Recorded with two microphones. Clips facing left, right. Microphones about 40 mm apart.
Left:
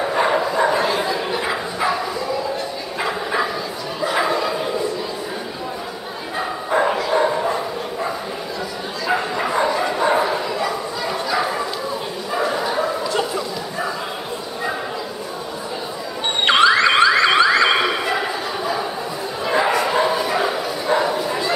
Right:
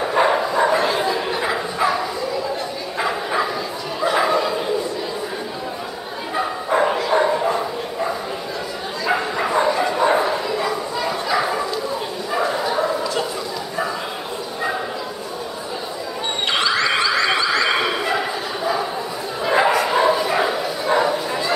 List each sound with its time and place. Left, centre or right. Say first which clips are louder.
0.1 s dog: right 3 dB; centre
3.0 s bow-wow: even; centre
6.7 s bow-wow: even; centre
9.0 s dog: even; centre
12.3 s bow-wow: even; centre
16.4 s car alarm: left 6 dB; left
17.7 s bow-wow: left 1 dB; centre